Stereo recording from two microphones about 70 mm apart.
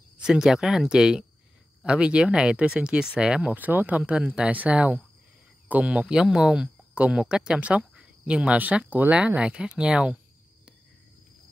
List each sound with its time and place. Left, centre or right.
0.2 s speech: centre
3.5 s speech: right